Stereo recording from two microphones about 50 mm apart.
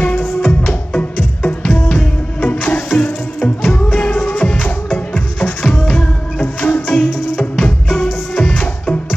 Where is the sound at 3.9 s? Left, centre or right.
Left.